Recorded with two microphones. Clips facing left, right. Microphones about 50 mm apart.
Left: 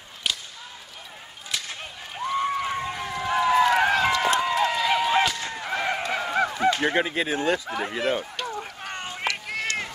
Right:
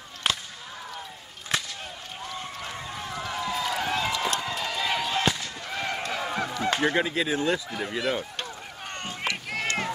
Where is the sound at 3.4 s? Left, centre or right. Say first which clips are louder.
Left 10 dB; left.